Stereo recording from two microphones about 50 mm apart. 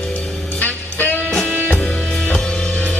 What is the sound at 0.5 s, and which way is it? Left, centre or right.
Music, left.